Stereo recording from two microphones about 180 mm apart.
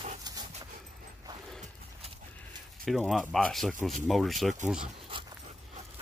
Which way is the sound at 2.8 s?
Centre (ahead or behind).